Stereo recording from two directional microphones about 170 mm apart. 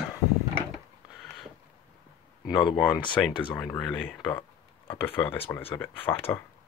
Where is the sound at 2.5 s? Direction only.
25° left (ahead or behind).